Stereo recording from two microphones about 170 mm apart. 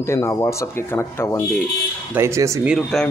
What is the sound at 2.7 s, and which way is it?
Speech, centre (ahead or behind).